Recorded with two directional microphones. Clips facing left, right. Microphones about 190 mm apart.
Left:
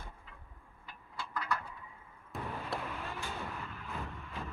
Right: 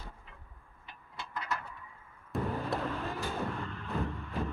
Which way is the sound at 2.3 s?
Centre (ahead or behind).